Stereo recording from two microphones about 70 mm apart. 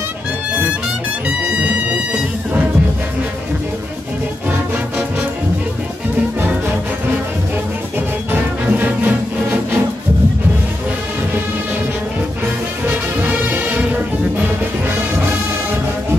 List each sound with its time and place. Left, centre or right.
1.2 s music: centre
8.3 s music: right
12.8 s music: right